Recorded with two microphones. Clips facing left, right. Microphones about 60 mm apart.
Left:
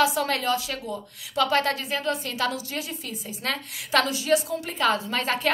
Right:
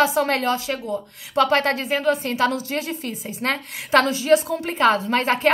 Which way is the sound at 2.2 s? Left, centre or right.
Right.